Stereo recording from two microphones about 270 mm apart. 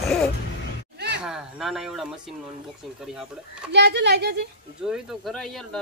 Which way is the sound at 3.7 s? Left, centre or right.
Right.